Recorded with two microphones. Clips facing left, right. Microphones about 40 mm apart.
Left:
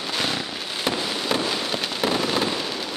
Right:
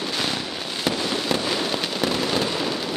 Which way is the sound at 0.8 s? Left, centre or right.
Centre.